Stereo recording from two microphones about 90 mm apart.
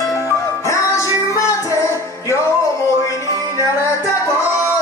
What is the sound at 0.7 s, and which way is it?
Music, 35° left (ahead or behind).